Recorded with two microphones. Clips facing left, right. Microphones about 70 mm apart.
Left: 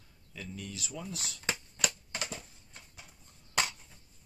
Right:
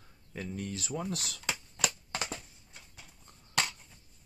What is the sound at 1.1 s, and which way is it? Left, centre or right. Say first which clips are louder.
Speech: right 4 dB; right.